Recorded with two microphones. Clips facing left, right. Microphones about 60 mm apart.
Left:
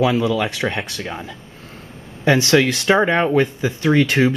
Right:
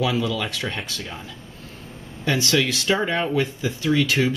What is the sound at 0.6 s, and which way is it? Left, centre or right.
Speech, left.